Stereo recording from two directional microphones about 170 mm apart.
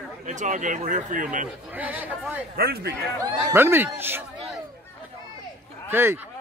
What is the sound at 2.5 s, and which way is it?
Speech, 65° right (ahead or behind).